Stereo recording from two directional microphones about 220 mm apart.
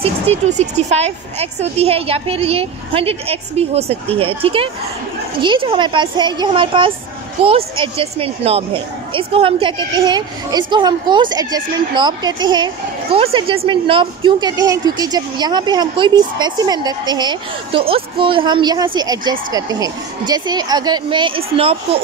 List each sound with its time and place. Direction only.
0.0 s a woman's voice: 30° right (ahead or behind)